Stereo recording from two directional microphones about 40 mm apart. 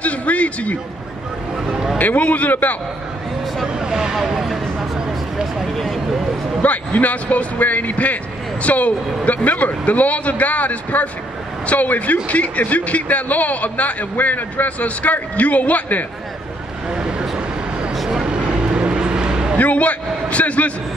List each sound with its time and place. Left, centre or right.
0.0 s a man's voice: left
2.0 s a man's voice: left
3.6 s speech: centre
4.9 s a sound: centre
6.6 s a man's voice: left
16.9 s vehicle: centre
17.9 s vehicle: centre
18.2 s vehicle: right
19.6 s a man's voice: left